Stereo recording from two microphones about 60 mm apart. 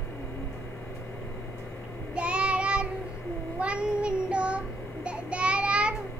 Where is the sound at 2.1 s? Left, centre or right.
Centre.